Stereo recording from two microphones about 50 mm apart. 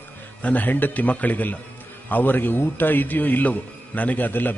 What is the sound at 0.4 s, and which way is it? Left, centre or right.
A man's voice, left.